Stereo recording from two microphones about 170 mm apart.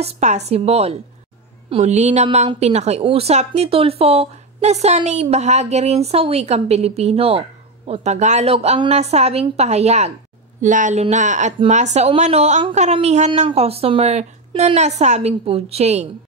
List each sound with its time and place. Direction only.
0.0 s a woman's voice: 40° right (ahead or behind)